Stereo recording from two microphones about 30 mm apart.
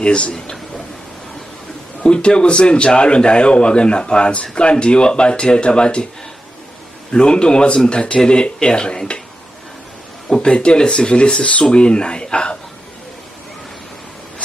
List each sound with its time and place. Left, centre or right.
2.0 s speech: left
7.1 s speech: left
10.4 s speech: left